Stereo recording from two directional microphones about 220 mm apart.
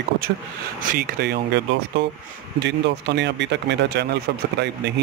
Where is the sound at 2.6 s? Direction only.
50° right (ahead or behind).